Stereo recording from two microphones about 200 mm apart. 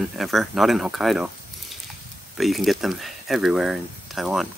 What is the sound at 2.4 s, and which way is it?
Speech, centre (ahead or behind).